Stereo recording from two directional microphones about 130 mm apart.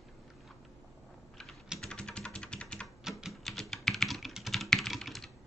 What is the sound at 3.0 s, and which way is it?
Typing, 5° right (ahead or behind).